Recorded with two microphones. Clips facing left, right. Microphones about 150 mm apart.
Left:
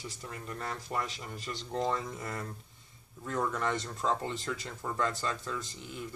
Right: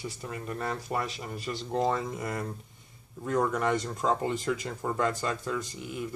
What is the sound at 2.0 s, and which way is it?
Speech, 20° right (ahead or behind).